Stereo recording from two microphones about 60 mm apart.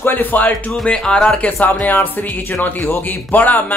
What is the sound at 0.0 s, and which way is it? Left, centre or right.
Speech, left.